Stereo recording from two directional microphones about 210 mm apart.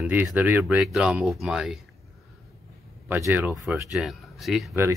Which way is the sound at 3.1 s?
10° right (ahead or behind).